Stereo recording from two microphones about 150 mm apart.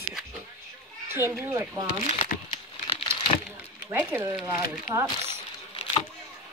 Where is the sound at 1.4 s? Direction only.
15° right (ahead or behind).